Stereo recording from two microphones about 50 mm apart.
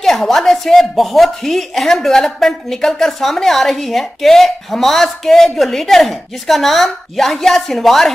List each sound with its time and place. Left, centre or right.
0.0 s speech: centre